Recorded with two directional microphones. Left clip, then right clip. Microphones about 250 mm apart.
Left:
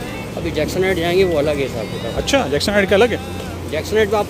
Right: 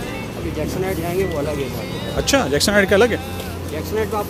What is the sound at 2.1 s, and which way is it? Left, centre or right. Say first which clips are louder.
Speech: even; centre.